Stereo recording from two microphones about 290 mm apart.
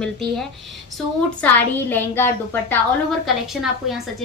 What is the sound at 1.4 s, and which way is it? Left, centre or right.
A woman's voice, centre.